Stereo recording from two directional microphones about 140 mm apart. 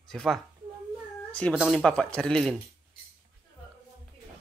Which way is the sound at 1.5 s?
5° right (ahead or behind).